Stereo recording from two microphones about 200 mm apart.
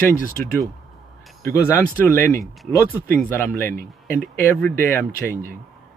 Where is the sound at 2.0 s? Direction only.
10° left (ahead or behind).